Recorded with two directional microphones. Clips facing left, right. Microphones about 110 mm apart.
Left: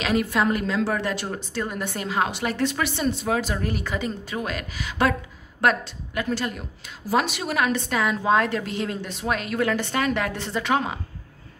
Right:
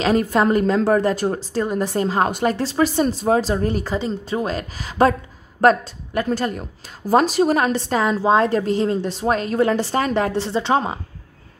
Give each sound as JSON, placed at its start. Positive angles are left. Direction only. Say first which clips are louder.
{"t": 0.0, "sound": "a woman's voice", "louder": "right 5 dB", "side_deg": -40}